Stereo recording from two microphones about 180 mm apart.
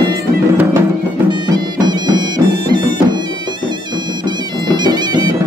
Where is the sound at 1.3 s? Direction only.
25° right (ahead or behind).